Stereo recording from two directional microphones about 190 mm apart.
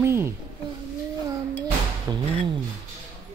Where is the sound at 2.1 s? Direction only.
20° right (ahead or behind).